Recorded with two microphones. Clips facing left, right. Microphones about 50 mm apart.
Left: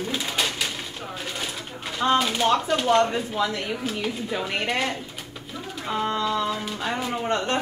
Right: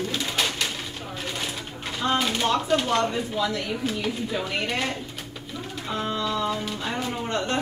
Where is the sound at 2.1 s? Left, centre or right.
Centre.